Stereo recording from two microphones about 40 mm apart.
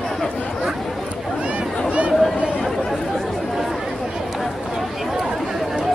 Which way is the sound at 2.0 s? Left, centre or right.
Right.